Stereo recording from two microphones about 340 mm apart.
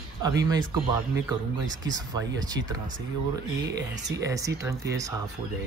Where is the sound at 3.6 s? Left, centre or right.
Right.